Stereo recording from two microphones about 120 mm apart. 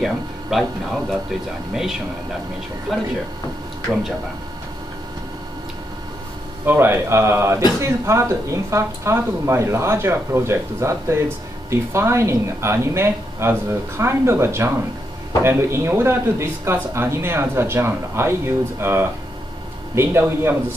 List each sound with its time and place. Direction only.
0.0 s a sound: centre (ahead or behind)
1.7 s speech: 5° right (ahead or behind)
6.6 s speech: 20° right (ahead or behind)